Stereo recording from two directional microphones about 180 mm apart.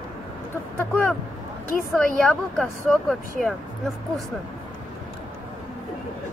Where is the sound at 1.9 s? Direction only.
5° left (ahead or behind).